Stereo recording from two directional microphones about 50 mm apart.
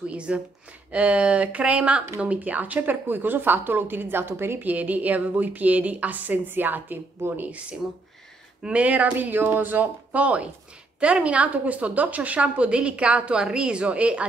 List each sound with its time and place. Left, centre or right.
0.1 s a woman's voice: right
4.6 s speech: right
8.7 s a woman's voice: right
9.3 s a woman's voice: right